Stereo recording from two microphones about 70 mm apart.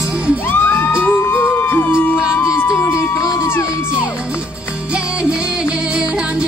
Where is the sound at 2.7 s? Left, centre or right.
Left.